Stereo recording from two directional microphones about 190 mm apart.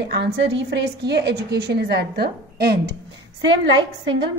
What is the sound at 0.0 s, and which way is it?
A woman's voice, 65° right (ahead or behind).